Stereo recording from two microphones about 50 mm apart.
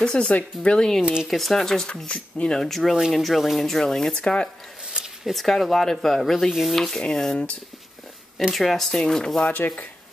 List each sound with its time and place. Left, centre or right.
0.0 s speech: centre
1.2 s speech: centre
2.0 s speech: centre
2.6 s speech: centre
3.6 s speech: centre
5.2 s speech: centre
6.8 s speech: centre
8.4 s speech: centre
8.6 s speech: centre
9.6 s speech: left